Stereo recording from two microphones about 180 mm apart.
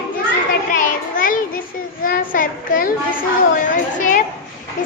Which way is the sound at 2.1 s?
50° left (ahead or behind).